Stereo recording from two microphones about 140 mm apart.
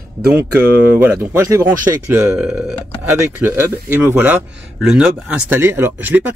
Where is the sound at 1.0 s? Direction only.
15° right (ahead or behind).